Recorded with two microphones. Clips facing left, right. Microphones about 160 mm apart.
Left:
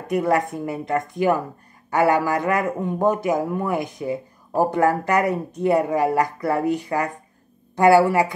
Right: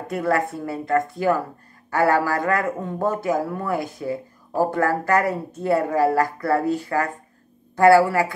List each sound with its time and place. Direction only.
0.1 s speech: 15° left (ahead or behind)